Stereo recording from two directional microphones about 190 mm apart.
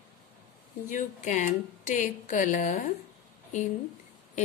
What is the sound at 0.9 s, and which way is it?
Speech, 40° left (ahead or behind).